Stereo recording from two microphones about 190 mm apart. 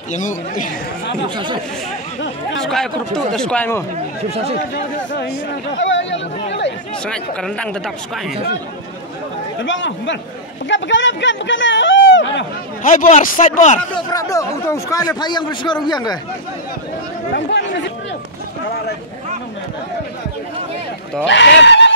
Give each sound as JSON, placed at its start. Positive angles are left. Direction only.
{"t": 0.1, "sound": "speech", "side_deg": 40}
{"t": 1.3, "sound": "speech", "side_deg": -25}
{"t": 2.6, "sound": "speech", "side_deg": 5}
{"t": 4.3, "sound": "speech", "side_deg": -30}
{"t": 5.8, "sound": "speech", "side_deg": 75}
{"t": 7.1, "sound": "speech", "side_deg": 5}
{"t": 9.6, "sound": "a man's voice", "side_deg": 75}
{"t": 12.8, "sound": "speech", "side_deg": 45}
{"t": 13.9, "sound": "a man's voice", "side_deg": 20}
{"t": 21.3, "sound": "speech", "side_deg": 65}